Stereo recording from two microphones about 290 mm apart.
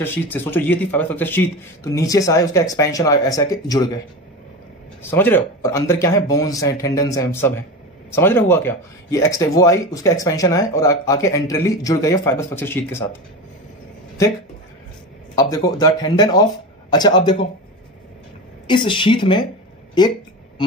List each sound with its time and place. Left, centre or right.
0.0 s speech: centre
5.0 s speech: centre
15.3 s speech: centre
18.7 s speech: centre